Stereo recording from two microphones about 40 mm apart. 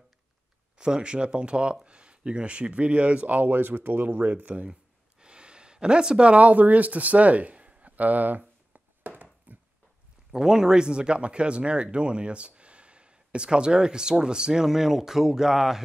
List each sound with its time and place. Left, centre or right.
0.7 s speech: right
5.2 s gasp: right
6.3 s a sound: right
10.3 s speech: centre